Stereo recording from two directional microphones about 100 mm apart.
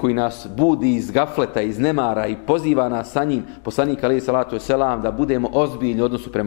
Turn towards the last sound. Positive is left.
turn(degrees=15)  # may be behind; listen again after turning